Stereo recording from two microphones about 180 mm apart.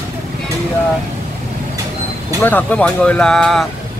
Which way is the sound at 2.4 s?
10° left (ahead or behind).